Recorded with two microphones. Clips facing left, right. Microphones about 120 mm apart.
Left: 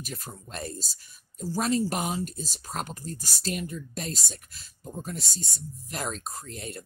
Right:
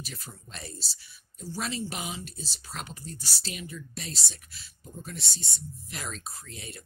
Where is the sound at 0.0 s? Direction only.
45° left (ahead or behind).